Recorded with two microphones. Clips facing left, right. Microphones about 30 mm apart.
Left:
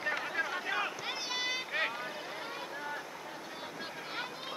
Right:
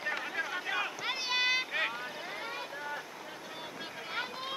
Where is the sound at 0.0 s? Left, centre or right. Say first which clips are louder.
Left 1 dB; centre.